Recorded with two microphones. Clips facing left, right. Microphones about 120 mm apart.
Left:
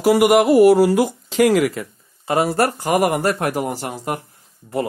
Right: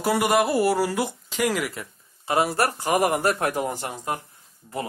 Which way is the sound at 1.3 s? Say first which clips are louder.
Left 10 dB; 80° left.